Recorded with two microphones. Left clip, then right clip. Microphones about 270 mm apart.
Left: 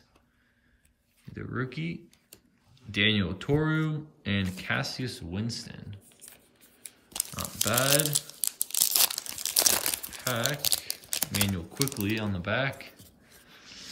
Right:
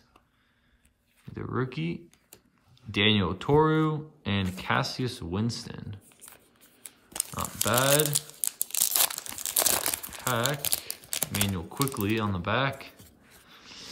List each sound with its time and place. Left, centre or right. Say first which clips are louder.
1.3 s speech: right 3 dB; centre
6.8 s shuffling cards: even; centre
8.3 s crumpling: left 1 dB; centre
13.0 s a sound: right 1 dB; centre